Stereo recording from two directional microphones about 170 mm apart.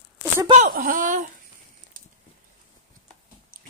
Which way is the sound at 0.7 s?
55° right (ahead or behind).